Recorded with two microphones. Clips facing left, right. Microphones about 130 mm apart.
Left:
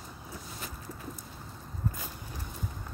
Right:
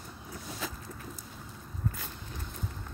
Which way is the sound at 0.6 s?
90° right.